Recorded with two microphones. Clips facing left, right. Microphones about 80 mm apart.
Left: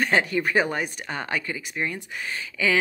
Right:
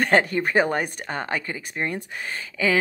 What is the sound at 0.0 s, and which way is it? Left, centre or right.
Speech, right.